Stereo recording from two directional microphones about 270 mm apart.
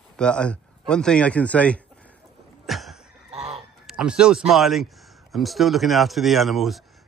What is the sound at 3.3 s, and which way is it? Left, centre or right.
Fowl, right.